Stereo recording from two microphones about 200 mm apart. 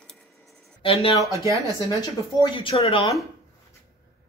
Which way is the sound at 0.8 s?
25° left (ahead or behind).